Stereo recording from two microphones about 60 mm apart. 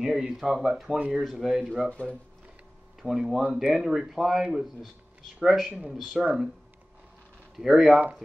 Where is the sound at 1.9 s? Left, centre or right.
Centre.